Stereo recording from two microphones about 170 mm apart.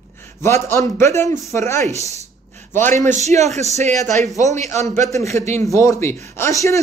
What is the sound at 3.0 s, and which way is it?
Speech, 45° right (ahead or behind).